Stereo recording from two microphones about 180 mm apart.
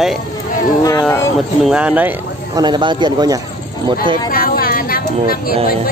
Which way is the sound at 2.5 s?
25° right (ahead or behind).